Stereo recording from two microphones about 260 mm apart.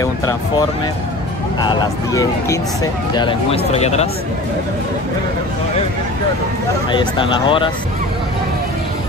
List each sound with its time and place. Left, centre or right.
0.0 s music: centre
1.6 s speech: centre
6.9 s speech: centre